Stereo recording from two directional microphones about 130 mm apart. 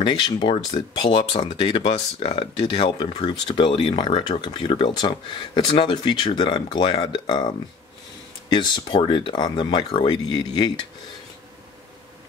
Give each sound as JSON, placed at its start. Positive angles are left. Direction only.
{"t": 0.0, "sound": "speech", "side_deg": 35}
{"t": 1.3, "sound": "speech", "side_deg": 50}